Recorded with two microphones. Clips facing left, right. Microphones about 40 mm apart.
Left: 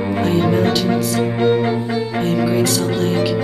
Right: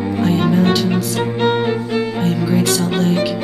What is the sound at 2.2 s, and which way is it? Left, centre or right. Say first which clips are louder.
Music: left 3 dB; centre.